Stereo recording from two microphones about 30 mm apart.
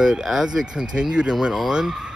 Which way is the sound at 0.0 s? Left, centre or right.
Centre.